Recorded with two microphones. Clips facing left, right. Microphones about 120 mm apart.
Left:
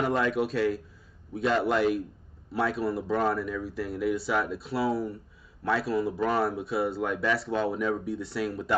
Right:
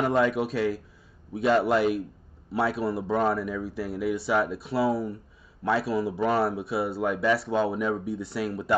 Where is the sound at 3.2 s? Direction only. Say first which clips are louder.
Right 2 dB; 5° right (ahead or behind).